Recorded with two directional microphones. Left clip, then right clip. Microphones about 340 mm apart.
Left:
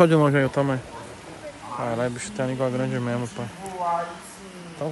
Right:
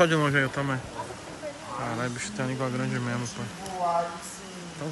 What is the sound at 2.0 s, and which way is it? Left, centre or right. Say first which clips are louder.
Speech: left 5 dB; centre.